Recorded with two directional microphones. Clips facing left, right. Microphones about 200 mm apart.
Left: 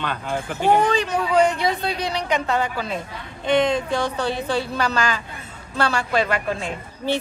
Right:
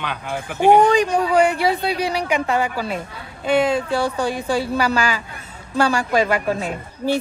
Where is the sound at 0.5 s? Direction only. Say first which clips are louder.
Right 5 dB; 50° right (ahead or behind).